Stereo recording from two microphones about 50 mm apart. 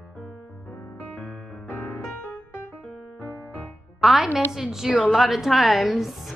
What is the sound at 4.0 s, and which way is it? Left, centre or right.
A woman's voice, centre.